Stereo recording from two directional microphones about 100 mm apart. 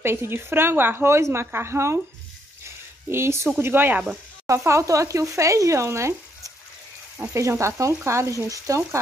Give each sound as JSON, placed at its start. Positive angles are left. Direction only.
{"t": 0.0, "sound": "speech", "side_deg": -25}
{"t": 2.6, "sound": "a sound", "side_deg": -25}
{"t": 3.5, "sound": "speech", "side_deg": -20}